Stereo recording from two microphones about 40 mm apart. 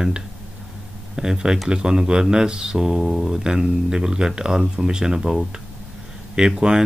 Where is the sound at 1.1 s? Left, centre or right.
Centre.